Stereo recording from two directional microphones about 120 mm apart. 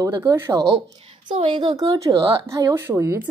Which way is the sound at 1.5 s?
40° right (ahead or behind).